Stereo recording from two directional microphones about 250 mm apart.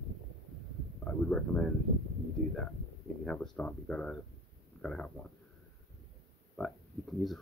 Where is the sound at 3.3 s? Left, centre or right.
Centre.